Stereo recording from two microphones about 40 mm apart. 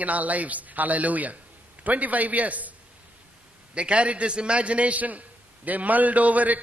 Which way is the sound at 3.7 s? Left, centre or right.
Right.